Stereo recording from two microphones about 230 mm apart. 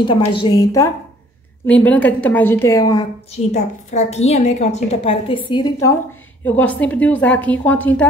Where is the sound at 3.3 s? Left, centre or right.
Left; by 8.1 s centre.